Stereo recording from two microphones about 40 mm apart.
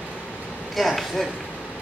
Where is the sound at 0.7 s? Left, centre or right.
Centre.